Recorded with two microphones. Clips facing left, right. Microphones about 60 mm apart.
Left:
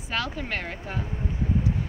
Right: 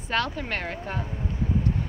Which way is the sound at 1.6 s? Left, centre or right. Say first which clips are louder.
Even; centre.